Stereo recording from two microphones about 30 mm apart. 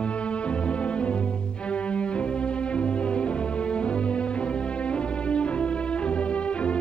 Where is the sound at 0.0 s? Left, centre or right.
Left.